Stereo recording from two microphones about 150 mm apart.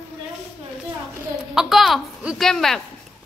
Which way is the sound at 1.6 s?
Centre (ahead or behind).